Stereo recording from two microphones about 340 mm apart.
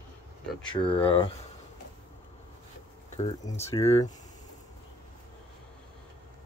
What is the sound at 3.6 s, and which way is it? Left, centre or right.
Speech, centre.